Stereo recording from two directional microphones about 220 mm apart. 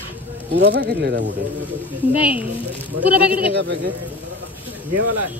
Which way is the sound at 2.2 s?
5° right (ahead or behind).